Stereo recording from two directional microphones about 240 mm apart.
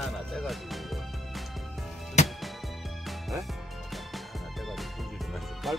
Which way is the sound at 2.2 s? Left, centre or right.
Left.